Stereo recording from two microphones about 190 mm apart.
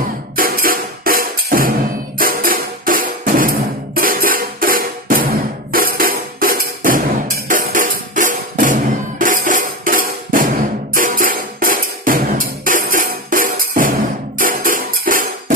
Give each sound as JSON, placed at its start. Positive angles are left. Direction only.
{"t": 0.4, "sound": "music", "side_deg": -50}